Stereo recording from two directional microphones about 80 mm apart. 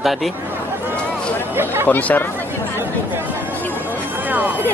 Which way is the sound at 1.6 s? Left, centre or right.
Right.